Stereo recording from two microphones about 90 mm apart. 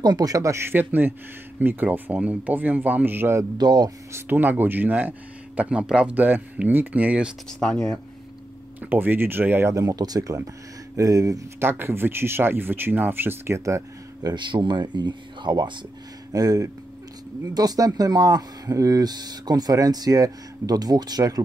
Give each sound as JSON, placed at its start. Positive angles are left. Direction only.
{"t": 0.0, "sound": "a man's voice", "side_deg": -45}
{"t": 3.5, "sound": "speech", "side_deg": -50}
{"t": 4.1, "sound": "speech", "side_deg": -20}
{"t": 7.6, "sound": "speech", "side_deg": 5}
{"t": 8.8, "sound": "speech", "side_deg": -20}
{"t": 9.8, "sound": "a man's voice", "side_deg": -40}
{"t": 11.6, "sound": "speech", "side_deg": -25}
{"t": 14.2, "sound": "speech", "side_deg": -60}
{"t": 16.3, "sound": "speech", "side_deg": -40}